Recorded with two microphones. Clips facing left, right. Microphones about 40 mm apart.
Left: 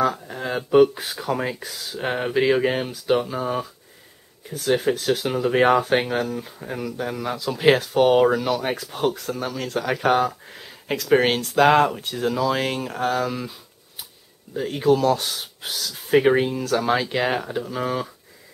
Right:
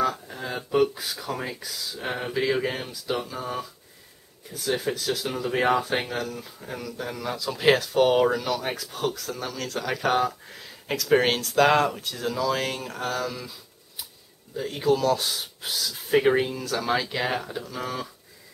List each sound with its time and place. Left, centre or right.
0.3 s a sound: left
1.1 s speech: left
1.6 s speech: left
4.5 s speech: left
4.9 s speech: left
8.7 s speech: left
15.9 s speech: centre